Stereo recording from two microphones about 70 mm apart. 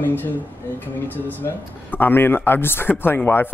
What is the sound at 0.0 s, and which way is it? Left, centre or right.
Speech, left.